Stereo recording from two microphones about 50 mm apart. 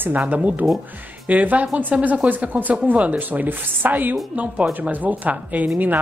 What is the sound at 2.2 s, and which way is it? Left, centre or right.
A woman's voice, right.